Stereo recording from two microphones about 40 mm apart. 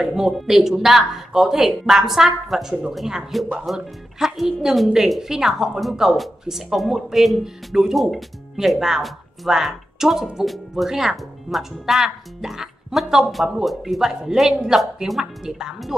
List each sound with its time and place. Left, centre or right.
0.0 s speech: centre
8.7 s speech: centre
15.9 s speech: centre